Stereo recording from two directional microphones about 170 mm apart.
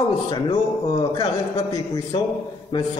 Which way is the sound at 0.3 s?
25° left (ahead or behind).